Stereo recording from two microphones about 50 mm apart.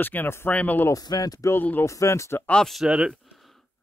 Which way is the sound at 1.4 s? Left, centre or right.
Left.